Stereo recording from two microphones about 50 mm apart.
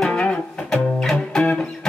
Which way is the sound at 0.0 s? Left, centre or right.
Centre.